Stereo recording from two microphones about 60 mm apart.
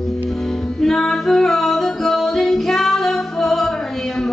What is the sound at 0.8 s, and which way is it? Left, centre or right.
Music, centre.